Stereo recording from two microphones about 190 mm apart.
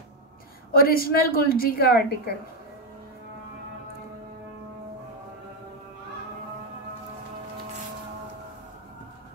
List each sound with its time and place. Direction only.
0.7 s a woman's voice: 50° left (ahead or behind)